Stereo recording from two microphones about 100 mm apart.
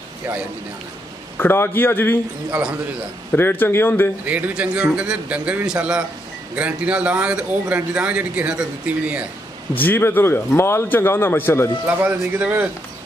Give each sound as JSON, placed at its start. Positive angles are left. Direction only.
{"t": 1.4, "sound": "a man's voice", "side_deg": 25}
{"t": 3.3, "sound": "a man's voice", "side_deg": 20}
{"t": 4.2, "sound": "speech", "side_deg": -15}
{"t": 9.8, "sound": "a man's voice", "side_deg": 20}
{"t": 11.8, "sound": "speech", "side_deg": -15}